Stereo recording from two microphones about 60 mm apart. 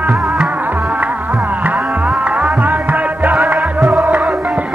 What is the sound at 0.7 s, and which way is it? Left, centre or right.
Music, right.